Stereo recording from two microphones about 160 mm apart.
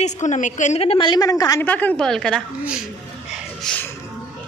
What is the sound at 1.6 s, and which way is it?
Speech, 10° left (ahead or behind).